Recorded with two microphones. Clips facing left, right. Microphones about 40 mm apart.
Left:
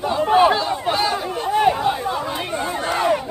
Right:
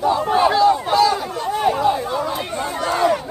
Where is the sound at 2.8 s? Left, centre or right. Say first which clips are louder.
Right 2 dB; centre.